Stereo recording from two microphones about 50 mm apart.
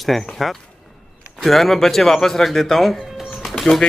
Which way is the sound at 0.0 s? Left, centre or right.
Centre.